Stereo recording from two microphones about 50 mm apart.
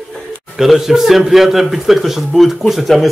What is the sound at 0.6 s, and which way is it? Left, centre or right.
A man's voice, centre.